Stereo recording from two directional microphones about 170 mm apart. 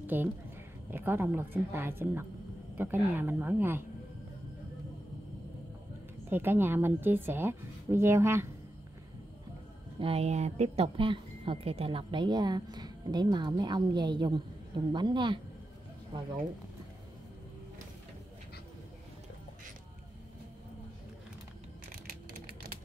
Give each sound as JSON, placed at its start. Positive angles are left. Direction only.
{"t": 0.0, "sound": "a woman's voice", "side_deg": -10}
{"t": 6.3, "sound": "a woman's voice", "side_deg": -15}
{"t": 9.9, "sound": "speech", "side_deg": -35}